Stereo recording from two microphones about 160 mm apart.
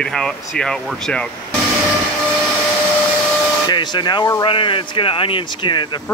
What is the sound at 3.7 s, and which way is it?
Speech, 30° left (ahead or behind).